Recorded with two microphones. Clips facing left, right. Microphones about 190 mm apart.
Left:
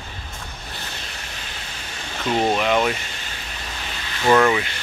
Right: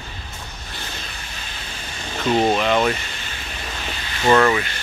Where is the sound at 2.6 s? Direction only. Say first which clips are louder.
Right 1 dB; 10° left (ahead or behind).